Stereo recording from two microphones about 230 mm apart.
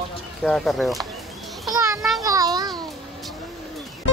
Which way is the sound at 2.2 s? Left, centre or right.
Centre.